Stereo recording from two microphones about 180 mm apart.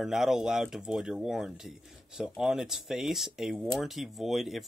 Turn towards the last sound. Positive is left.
turn(degrees=0)  # may be behind; listen again after turning